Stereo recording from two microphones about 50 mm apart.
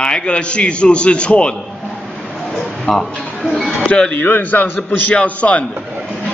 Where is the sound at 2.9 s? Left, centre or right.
Centre.